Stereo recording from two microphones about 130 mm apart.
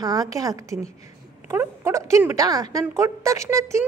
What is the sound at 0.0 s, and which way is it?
A woman's voice, 30° right (ahead or behind).